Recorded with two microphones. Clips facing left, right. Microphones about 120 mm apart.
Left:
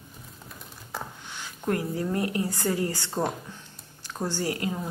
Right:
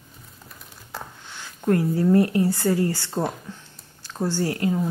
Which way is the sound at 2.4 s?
15° left (ahead or behind).